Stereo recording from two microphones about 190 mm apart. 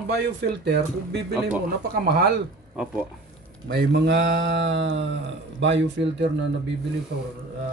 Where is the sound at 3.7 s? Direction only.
65° right (ahead or behind).